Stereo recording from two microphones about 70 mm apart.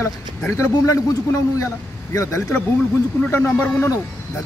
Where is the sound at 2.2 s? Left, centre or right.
Left.